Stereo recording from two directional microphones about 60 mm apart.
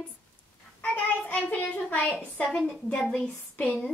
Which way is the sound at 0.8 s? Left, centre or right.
Left.